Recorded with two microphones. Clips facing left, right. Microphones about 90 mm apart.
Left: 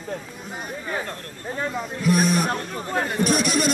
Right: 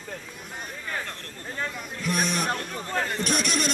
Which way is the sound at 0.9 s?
15° left (ahead or behind).